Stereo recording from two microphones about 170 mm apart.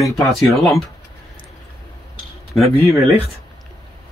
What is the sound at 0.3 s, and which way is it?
Speech, centre (ahead or behind).